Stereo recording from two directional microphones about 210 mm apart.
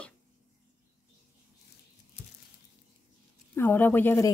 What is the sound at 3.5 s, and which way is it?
Speech, 10° left (ahead or behind).